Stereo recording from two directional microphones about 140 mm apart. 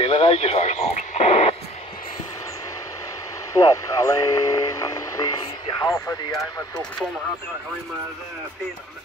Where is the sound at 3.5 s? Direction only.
25° left (ahead or behind).